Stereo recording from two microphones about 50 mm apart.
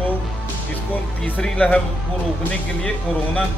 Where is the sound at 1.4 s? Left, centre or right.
Centre.